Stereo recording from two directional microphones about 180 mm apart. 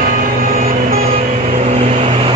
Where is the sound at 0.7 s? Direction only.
35° right (ahead or behind).